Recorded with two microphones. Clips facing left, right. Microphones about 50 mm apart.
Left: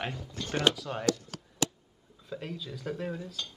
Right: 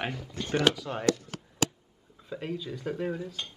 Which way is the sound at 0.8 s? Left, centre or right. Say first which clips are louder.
Right 1 dB; centre.